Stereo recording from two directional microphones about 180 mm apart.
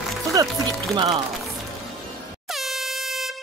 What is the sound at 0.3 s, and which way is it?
Speech, 20° right (ahead or behind).